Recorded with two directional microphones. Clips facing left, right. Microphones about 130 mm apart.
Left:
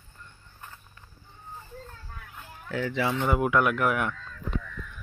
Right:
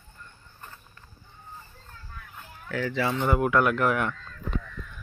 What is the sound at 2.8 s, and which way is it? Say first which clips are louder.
Speech: even; 10° left (ahead or behind).